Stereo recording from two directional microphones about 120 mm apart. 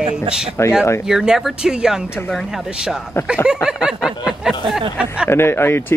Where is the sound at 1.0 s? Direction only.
5° right (ahead or behind).